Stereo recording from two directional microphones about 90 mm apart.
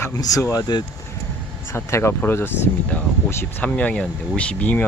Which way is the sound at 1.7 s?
30° left (ahead or behind).